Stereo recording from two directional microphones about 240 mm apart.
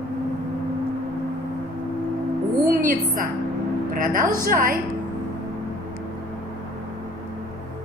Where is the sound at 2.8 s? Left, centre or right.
Right.